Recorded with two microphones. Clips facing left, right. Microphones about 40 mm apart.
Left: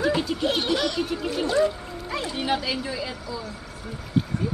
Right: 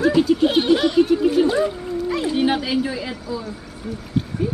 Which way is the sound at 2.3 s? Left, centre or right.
Centre.